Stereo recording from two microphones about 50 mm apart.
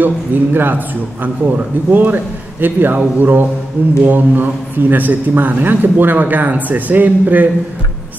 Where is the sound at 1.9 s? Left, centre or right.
Right.